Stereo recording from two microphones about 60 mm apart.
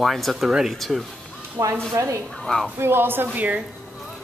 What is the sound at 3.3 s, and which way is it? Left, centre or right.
Speech, right.